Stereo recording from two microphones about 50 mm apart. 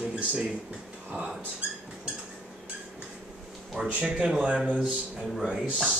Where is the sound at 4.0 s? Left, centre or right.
Centre.